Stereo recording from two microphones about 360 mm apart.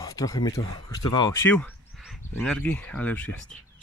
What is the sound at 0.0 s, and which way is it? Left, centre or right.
Speech, centre.